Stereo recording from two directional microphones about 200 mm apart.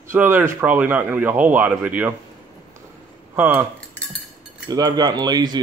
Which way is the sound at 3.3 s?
10° right (ahead or behind).